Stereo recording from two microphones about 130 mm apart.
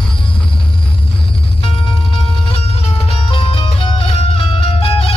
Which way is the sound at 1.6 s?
40° left (ahead or behind).